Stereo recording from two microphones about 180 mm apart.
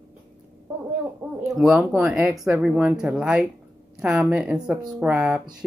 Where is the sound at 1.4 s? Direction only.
5° right (ahead or behind).